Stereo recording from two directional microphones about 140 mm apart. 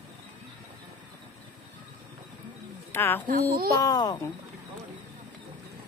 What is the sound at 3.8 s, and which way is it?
Speech, 25° left (ahead or behind).